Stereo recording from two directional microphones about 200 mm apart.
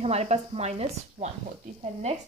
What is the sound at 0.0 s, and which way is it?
Speech, 35° right (ahead or behind).